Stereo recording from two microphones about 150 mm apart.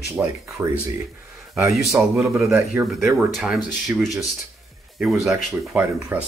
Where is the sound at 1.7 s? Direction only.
Centre (ahead or behind).